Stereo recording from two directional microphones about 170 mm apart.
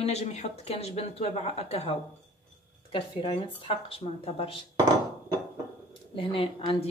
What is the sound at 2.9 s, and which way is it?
Speech, 30° left (ahead or behind).